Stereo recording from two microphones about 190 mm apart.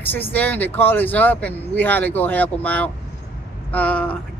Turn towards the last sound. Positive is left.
turn(degrees=5)  # may be behind; listen again after turning